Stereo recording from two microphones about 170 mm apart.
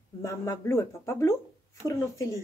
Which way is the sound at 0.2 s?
15° left (ahead or behind).